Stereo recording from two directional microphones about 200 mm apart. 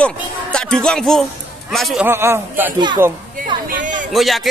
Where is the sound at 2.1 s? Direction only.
10° right (ahead or behind).